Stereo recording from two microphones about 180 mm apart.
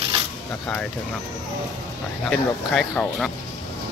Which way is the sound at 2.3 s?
5° left (ahead or behind).